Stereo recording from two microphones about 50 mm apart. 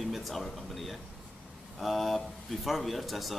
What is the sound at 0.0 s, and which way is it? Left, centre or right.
Speech, centre.